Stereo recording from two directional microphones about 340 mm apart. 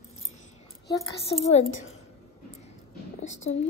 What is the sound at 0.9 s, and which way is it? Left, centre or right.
Speech, centre.